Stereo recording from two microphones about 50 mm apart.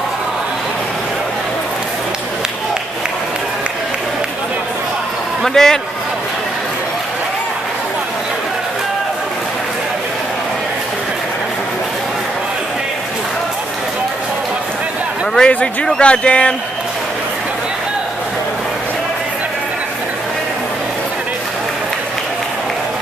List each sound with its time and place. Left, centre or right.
5.4 s a man's voice: centre
15.3 s a man's voice: centre